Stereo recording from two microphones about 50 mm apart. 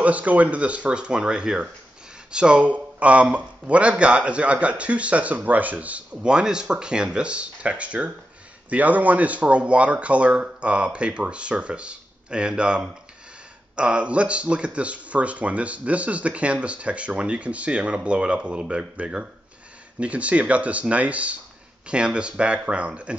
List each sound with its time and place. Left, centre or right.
0.0 s speech: right